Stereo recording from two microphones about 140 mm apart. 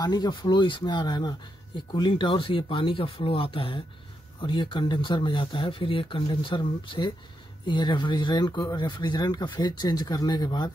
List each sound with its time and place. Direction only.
0.0 s speech: 30° left (ahead or behind)